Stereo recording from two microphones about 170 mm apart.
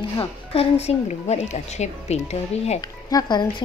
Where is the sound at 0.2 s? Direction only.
35° left (ahead or behind).